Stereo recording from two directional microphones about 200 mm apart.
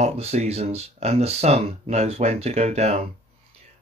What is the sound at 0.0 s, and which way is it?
A man's voice, 35° right (ahead or behind).